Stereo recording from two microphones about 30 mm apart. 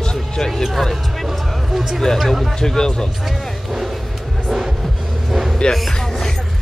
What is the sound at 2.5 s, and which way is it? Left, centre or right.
Speech, left.